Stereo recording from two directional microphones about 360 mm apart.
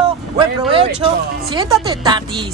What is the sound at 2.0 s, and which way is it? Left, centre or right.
Speech, centre.